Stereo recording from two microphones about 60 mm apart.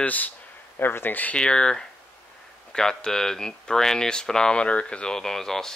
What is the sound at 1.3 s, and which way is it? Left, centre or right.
Speech, centre.